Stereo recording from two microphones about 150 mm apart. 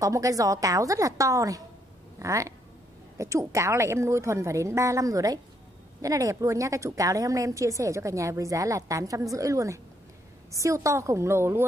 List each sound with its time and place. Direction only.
0.0 s a woman's voice: 20° right (ahead or behind)